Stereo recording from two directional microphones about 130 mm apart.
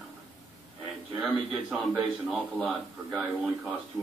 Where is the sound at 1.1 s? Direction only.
10° right (ahead or behind).